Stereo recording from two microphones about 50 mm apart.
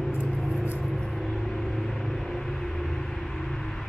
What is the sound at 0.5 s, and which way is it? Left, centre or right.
Vehicle, right.